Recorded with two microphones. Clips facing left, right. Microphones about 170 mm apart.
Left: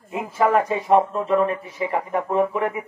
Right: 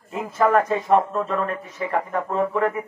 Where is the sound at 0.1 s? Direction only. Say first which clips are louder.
Even; 15° left (ahead or behind).